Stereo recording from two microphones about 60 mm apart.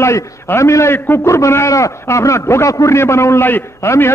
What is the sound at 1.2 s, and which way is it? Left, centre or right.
A man's voice, left.